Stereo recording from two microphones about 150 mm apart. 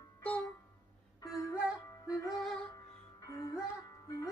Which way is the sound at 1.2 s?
20° left (ahead or behind).